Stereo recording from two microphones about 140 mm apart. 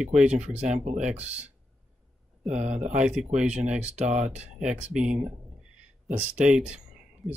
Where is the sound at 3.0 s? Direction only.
5° right (ahead or behind).